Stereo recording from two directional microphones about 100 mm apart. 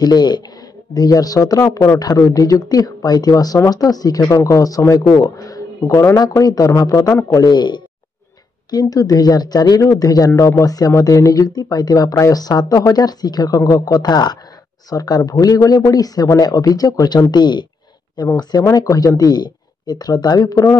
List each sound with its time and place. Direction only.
0.0 s a man's voice: 45° left (ahead or behind); by 7.4 s 30° left (ahead or behind)
7.4 s a man's voice: 50° left (ahead or behind)